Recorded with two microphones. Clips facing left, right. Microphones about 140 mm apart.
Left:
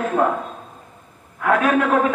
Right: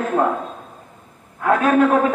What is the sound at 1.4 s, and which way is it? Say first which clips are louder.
Speech: right 1 dB; 30° right (ahead or behind).